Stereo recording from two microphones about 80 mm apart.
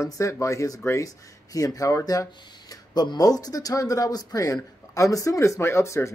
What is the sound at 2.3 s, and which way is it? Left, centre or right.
Speech, left.